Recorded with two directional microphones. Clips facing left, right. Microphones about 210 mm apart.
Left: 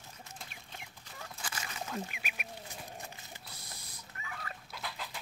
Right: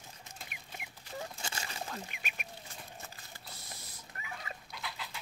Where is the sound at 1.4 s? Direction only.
30° right (ahead or behind).